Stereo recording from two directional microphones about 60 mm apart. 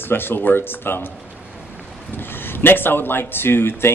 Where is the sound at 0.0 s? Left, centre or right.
Left.